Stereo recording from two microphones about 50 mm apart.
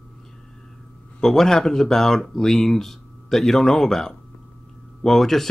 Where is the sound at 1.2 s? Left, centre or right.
Centre.